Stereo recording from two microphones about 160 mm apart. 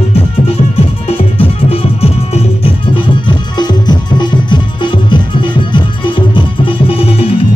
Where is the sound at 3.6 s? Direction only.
25° left (ahead or behind).